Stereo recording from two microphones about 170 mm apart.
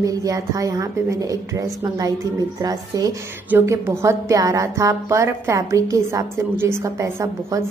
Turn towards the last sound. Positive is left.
turn(degrees=-15)  # may be behind; listen again after turning